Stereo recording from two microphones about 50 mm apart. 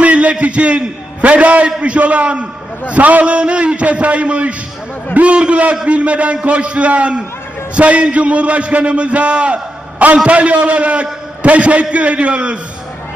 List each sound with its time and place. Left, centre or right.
0.0 s a man's voice: right